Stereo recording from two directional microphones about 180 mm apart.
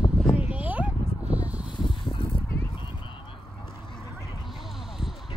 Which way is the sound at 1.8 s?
30° left (ahead or behind).